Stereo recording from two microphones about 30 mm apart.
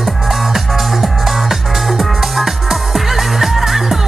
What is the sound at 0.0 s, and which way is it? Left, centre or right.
Music, centre.